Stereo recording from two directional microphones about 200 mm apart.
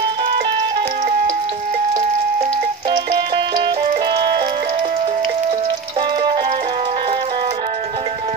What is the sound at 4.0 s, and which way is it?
Music, 25° right (ahead or behind).